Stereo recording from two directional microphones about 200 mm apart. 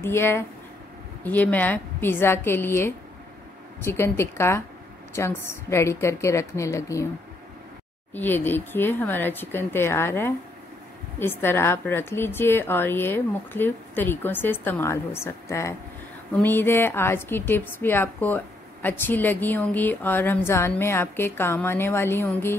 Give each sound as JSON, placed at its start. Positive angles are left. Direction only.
{"t": 0.0, "sound": "a woman's voice", "side_deg": 10}
{"t": 8.1, "sound": "a woman's voice", "side_deg": 10}